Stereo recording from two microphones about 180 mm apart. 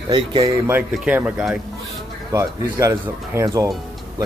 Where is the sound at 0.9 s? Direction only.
5° right (ahead or behind).